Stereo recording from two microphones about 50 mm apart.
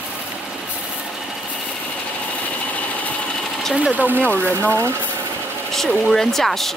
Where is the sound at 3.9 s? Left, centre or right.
Right.